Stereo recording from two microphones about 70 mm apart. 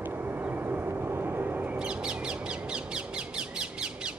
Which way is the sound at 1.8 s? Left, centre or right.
Centre.